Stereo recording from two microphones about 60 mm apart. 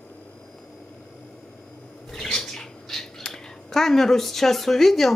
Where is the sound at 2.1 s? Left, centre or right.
Centre.